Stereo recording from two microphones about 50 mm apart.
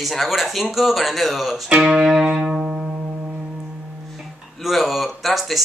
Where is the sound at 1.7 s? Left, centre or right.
Centre.